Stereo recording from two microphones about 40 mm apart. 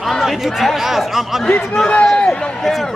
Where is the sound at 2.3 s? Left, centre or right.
Left.